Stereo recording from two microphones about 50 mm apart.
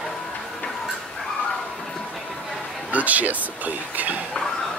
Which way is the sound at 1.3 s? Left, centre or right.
Left.